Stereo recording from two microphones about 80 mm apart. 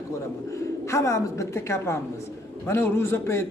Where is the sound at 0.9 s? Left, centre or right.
Left.